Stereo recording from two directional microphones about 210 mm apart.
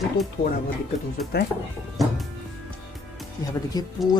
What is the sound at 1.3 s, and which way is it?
Speech, 50° left (ahead or behind).